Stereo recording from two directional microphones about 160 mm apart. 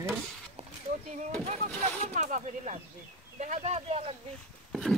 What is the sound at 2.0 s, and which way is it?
Speech, 50° right (ahead or behind).